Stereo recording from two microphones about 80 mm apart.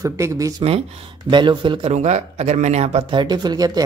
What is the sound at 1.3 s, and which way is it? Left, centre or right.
Speech, right.